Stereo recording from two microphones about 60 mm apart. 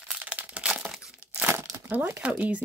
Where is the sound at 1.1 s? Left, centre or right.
Right.